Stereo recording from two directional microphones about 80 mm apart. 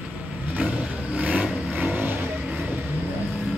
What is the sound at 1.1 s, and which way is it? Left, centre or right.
Vehicle, centre.